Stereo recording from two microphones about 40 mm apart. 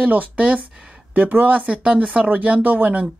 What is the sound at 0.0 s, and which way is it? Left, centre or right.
Speech, right.